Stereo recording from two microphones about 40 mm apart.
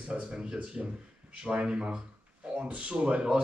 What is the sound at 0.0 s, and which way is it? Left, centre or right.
Speech, right.